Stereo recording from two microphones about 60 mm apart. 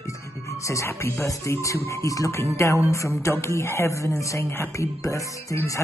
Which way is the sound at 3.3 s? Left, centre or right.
Left.